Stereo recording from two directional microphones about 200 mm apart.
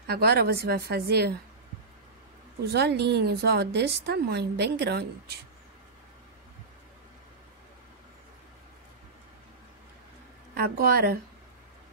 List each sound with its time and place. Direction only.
0.0 s a woman's voice: 50° right (ahead or behind)
2.6 s a woman's voice: 55° right (ahead or behind)
10.5 s a woman's voice: 50° right (ahead or behind)